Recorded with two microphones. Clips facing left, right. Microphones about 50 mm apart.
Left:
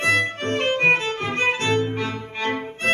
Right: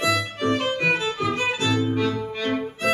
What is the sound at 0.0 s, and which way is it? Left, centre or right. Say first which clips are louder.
Violin: left 2 dB; left.